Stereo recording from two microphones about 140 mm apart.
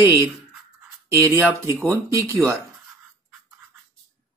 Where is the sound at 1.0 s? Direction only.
20° right (ahead or behind).